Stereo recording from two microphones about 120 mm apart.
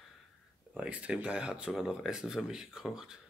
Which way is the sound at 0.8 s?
10° right (ahead or behind).